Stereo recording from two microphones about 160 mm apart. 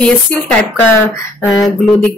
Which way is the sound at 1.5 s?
Centre (ahead or behind).